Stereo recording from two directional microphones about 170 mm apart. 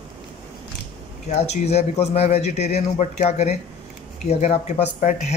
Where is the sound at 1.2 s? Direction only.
40° left (ahead or behind).